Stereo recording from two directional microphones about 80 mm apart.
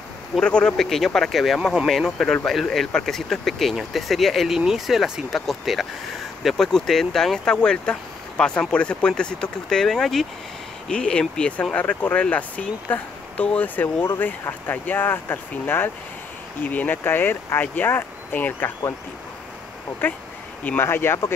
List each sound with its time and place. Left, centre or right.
0.4 s speech: centre
20.0 s speech: left